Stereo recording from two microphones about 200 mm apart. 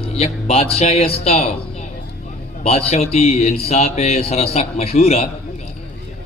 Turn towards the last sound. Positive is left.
turn(degrees=30)  # may be behind; listen again after turning